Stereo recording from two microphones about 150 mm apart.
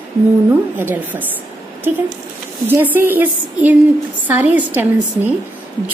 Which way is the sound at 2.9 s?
15° right (ahead or behind).